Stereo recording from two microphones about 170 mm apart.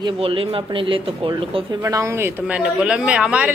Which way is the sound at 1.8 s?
20° right (ahead or behind).